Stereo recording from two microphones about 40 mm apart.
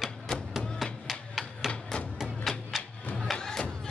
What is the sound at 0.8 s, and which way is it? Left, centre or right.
Music, centre.